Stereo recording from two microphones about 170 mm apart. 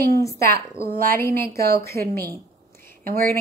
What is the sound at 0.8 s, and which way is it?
Speech, 60° right (ahead or behind).